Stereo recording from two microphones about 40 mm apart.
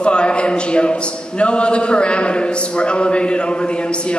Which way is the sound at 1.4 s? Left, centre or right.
Left.